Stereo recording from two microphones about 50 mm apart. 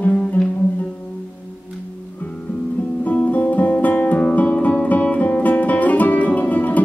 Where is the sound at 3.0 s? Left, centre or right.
Left.